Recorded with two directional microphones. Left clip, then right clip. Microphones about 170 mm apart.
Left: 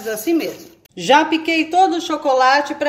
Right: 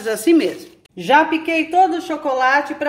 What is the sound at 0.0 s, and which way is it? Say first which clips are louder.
Speech: right 4 dB; 40° right (ahead or behind).